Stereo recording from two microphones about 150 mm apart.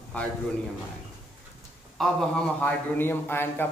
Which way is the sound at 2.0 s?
5° left (ahead or behind).